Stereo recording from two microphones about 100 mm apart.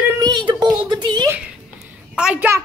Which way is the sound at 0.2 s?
45° right (ahead or behind).